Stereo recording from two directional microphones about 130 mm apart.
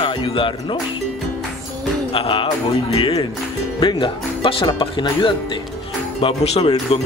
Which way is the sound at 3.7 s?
40° left (ahead or behind).